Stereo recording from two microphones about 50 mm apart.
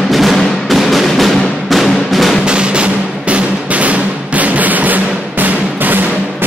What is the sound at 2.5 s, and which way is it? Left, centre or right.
Music, right.